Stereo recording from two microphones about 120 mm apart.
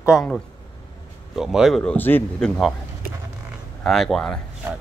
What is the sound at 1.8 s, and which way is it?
Speech, 10° left (ahead or behind).